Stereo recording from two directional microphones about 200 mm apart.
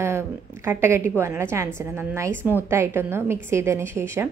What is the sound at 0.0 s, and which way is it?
A woman's voice, 10° right (ahead or behind).